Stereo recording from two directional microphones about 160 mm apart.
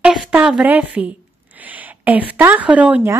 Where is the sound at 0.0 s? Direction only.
5° right (ahead or behind).